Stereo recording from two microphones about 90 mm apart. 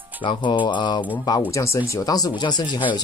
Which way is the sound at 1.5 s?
30° left (ahead or behind).